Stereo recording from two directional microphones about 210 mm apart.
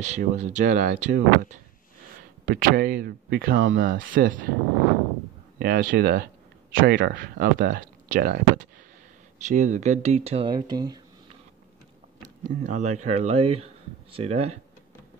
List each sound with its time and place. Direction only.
0.0 s speech: 35° right (ahead or behind)
5.6 s speech: 45° right (ahead or behind); by 11.0 s 20° right (ahead or behind)
12.4 s speech: 35° right (ahead or behind)